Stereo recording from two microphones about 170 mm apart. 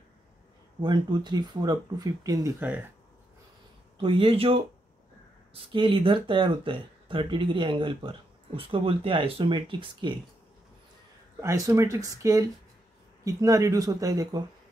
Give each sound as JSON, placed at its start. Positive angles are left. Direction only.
{"t": 0.7, "sound": "speech", "side_deg": -25}
{"t": 2.6, "sound": "speech", "side_deg": -10}
{"t": 4.0, "sound": "speech", "side_deg": -30}
{"t": 11.4, "sound": "speech", "side_deg": -20}